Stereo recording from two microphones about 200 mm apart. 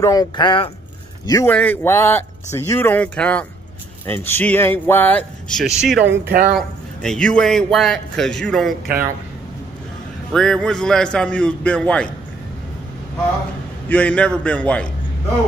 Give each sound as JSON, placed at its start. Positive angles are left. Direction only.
{"t": 0.0, "sound": "speech", "side_deg": 20}
{"t": 5.9, "sound": "speech", "side_deg": -60}
{"t": 6.5, "sound": "a man's voice", "side_deg": 5}
{"t": 8.8, "sound": "speech", "side_deg": -50}
{"t": 10.3, "sound": "a man's voice", "side_deg": 0}
{"t": 13.8, "sound": "speech", "side_deg": 5}